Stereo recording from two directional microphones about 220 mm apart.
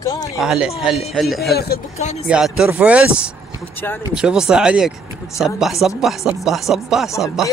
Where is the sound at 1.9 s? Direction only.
30° left (ahead or behind).